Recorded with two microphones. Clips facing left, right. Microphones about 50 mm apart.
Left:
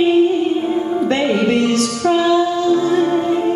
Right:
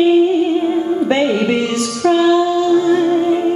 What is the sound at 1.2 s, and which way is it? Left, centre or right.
Music, centre.